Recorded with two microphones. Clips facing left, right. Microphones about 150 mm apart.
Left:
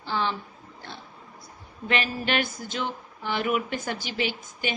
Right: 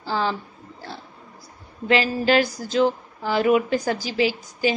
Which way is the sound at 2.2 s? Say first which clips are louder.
Right 8 dB; 40° right (ahead or behind).